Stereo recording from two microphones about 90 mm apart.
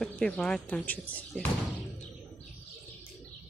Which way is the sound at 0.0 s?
10° left (ahead or behind).